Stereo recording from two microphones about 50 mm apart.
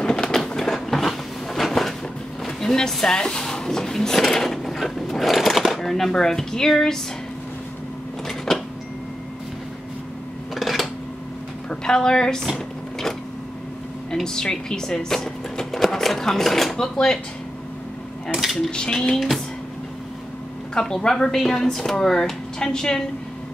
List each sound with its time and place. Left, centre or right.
0.0 s a sound: centre
2.4 s speech: centre
8.5 s printer: centre
10.5 s a sound: centre
11.7 s a woman's voice: centre
14.1 s speech: centre
18.3 s a sound: centre
18.7 s speech: centre
19.1 s speech: centre
20.7 s speech: centre